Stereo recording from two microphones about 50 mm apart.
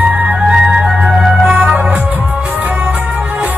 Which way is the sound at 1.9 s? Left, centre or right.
Right.